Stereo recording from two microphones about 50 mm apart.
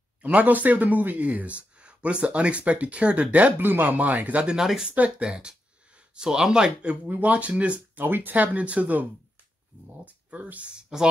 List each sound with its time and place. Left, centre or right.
0.2 s speech: right
4.6 s speech: centre
4.9 s speech: right
7.1 s speech: right
8.0 s speech: right
10.0 s speech: right
10.8 s speech: centre